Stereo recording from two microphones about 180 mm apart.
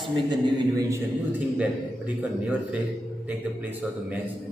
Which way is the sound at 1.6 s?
5° right (ahead or behind).